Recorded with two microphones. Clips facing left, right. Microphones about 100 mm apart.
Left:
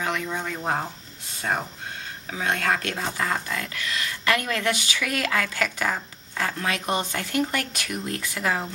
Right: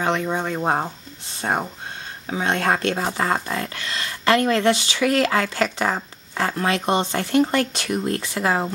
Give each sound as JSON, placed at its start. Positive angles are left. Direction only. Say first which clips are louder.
{"t": 0.0, "sound": "speech", "louder": "right 6 dB", "side_deg": -30}